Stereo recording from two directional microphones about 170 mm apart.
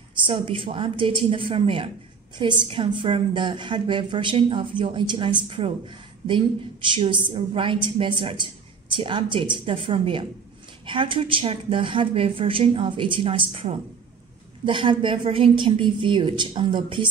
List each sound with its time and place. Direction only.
0.1 s a woman's voice: 30° right (ahead or behind)